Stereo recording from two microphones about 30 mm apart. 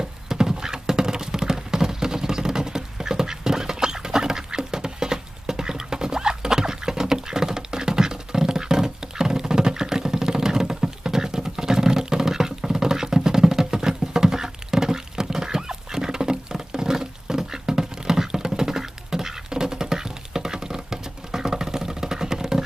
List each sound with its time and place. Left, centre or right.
0.0 s patter: centre